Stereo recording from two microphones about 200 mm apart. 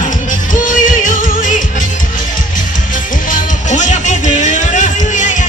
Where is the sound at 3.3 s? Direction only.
35° left (ahead or behind).